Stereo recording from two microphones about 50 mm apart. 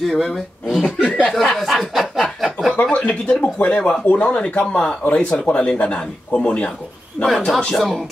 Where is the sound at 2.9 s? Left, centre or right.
Left.